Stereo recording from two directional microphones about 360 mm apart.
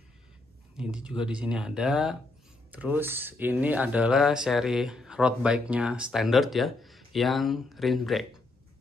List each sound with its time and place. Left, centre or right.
0.7 s speech: centre